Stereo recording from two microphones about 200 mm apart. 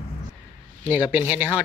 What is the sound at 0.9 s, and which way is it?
Speech, 10° right (ahead or behind).